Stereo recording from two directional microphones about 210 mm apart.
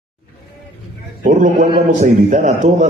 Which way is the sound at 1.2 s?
40° right (ahead or behind).